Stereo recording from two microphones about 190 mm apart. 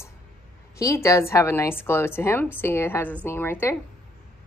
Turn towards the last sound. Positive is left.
turn(degrees=10)  # may be behind; listen again after turning